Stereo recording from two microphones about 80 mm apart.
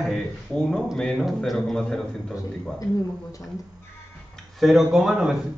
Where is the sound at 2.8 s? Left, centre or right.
Left.